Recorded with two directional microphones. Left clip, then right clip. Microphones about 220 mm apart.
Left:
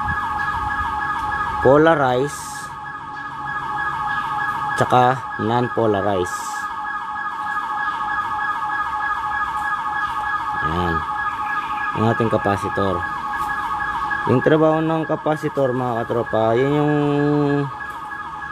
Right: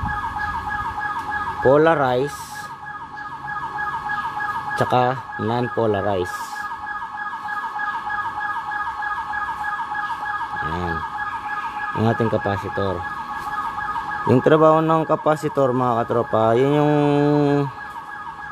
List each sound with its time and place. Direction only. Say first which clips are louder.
1.6 s speech: left 1 dB; 5° right (ahead or behind)
4.7 s ambulance: left 3 dB; 5° right (ahead or behind)
10.6 s emergency vehicle: left 4 dB; centre (ahead or behind)
11.9 s ambulance: left 1 dB; 10° right (ahead or behind)
14.2 s speech: right 2 dB; 15° right (ahead or behind)